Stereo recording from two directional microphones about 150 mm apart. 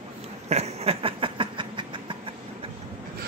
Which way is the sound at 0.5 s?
45° right (ahead or behind).